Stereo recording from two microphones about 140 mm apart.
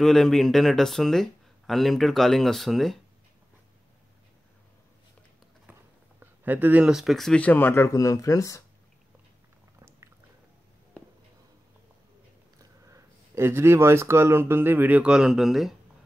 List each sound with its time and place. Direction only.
0.0 s speech: 5° left (ahead or behind)
5.7 s speech: 15° right (ahead or behind); by 8.6 s 25° left (ahead or behind)
12.9 s speech: 20° right (ahead or behind); by 15.7 s centre (ahead or behind)